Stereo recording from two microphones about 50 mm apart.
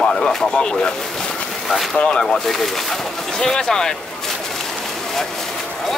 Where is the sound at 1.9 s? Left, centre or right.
Centre.